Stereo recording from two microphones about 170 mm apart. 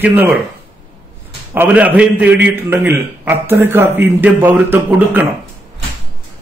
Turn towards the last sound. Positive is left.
turn(degrees=-10)  # may be behind; listen again after turning